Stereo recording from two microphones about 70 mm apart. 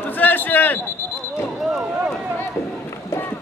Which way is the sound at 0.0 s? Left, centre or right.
Left.